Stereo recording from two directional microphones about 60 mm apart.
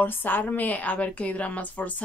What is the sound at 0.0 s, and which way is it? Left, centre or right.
Speech, left.